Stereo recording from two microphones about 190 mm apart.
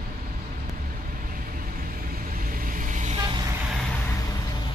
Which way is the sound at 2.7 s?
45° right (ahead or behind).